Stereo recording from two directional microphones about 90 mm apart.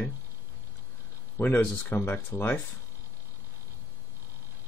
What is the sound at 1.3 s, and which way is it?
Speech, 20° left (ahead or behind).